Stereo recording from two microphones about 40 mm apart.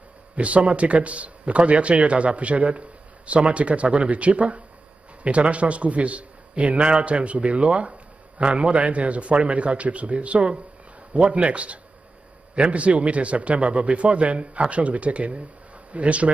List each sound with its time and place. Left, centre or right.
0.4 s a man's voice: right